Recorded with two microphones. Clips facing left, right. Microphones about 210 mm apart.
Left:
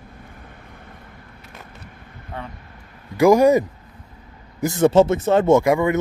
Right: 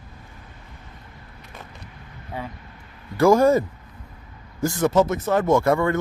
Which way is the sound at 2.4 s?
5° right (ahead or behind).